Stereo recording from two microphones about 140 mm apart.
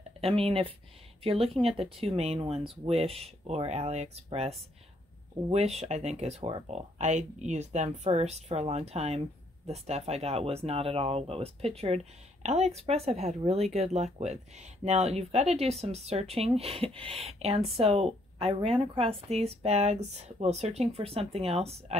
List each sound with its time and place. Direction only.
0.2 s speech: 45° right (ahead or behind)